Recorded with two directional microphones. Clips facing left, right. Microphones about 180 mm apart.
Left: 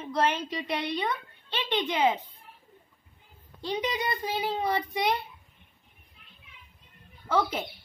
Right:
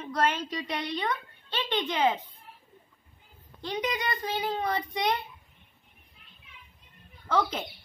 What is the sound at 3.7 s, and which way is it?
A child's voice, 15° left (ahead or behind).